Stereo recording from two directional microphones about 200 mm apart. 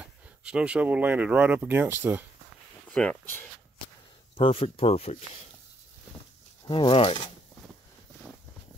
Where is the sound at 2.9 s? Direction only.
5° left (ahead or behind).